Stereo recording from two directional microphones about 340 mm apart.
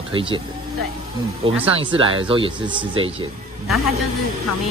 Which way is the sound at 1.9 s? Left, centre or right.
Centre.